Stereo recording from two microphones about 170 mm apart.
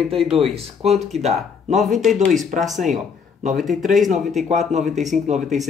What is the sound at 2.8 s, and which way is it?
Speech, 45° right (ahead or behind).